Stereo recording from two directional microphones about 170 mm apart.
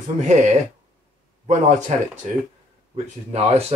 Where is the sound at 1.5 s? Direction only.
45° right (ahead or behind).